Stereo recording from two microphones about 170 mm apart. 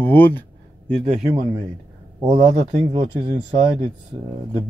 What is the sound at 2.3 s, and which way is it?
Speech, 35° right (ahead or behind).